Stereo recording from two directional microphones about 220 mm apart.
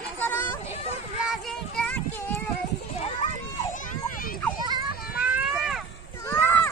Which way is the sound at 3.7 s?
40° left (ahead or behind).